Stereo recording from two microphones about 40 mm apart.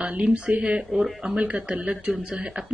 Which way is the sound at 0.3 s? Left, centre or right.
Right.